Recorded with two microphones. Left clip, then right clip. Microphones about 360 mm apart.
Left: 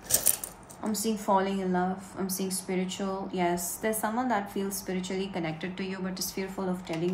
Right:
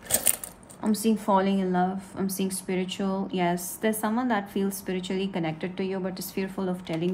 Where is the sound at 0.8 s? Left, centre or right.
Right.